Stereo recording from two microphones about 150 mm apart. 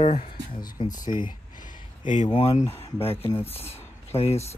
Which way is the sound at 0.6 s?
25° left (ahead or behind).